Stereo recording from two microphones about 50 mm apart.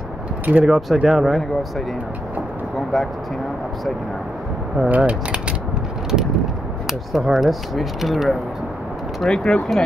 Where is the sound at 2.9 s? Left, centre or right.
Centre.